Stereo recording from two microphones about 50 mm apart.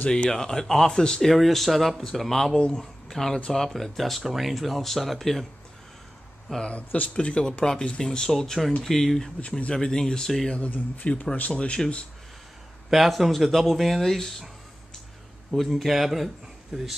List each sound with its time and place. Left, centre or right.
0.1 s speech: centre
1.3 s speech: centre
6.6 s speech: left; by 9.3 s centre
9.6 s speech: centre
10.5 s speech: left
12.9 s speech: centre
15.5 s speech: centre
16.7 s speech: centre